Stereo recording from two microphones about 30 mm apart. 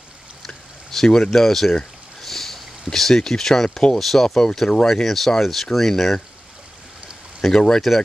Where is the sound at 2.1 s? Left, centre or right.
Centre.